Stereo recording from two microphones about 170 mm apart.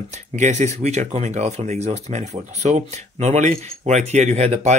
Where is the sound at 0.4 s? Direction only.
40° right (ahead or behind).